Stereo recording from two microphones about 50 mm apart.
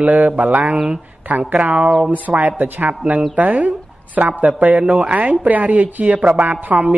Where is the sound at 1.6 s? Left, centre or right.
Right.